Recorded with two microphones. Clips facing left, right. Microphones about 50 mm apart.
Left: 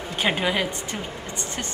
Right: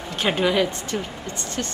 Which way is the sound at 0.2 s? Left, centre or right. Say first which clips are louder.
Right 3 dB; centre.